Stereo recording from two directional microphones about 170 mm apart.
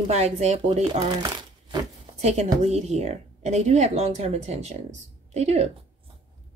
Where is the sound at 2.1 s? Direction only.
40° right (ahead or behind).